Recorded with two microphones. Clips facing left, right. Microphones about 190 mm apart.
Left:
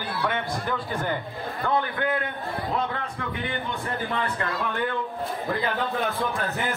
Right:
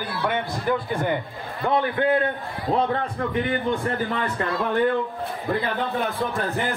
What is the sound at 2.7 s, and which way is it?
Speech, 35° right (ahead or behind).